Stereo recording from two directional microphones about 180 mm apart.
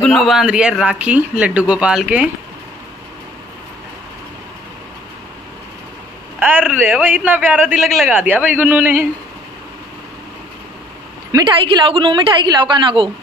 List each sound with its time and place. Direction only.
0.0 s speech: centre (ahead or behind)
6.4 s a man's voice: 10° right (ahead or behind)
7.6 s a man's voice: centre (ahead or behind)
11.3 s a woman's voice: 25° right (ahead or behind)